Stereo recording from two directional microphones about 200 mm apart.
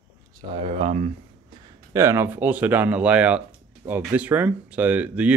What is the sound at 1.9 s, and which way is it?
Speech, 15° right (ahead or behind).